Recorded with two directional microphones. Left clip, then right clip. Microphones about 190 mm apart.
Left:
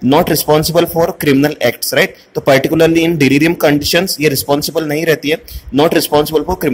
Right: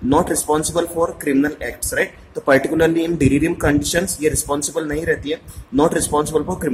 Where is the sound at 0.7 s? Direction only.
30° left (ahead or behind).